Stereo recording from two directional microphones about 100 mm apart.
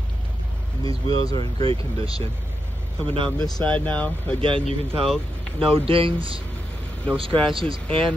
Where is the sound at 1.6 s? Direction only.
65° right (ahead or behind).